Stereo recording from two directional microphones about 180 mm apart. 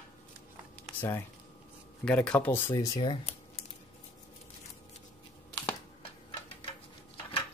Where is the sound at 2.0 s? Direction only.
5° left (ahead or behind); by 3.3 s 25° left (ahead or behind).